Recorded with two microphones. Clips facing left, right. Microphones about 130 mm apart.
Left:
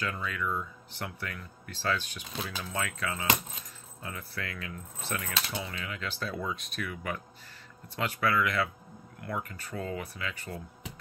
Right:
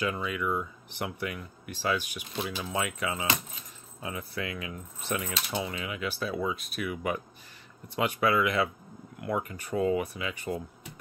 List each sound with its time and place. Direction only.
0.0 s speech: 15° right (ahead or behind)